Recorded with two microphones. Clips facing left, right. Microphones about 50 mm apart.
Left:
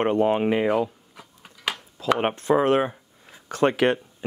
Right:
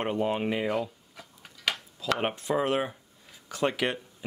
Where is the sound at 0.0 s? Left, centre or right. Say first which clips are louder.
Left 7 dB; left.